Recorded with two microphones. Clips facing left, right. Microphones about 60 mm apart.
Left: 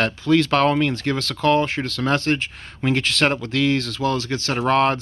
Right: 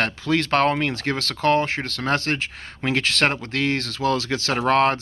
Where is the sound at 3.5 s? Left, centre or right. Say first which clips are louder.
Left 3 dB; right.